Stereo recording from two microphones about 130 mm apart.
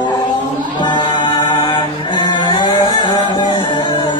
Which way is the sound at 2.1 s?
35° left (ahead or behind).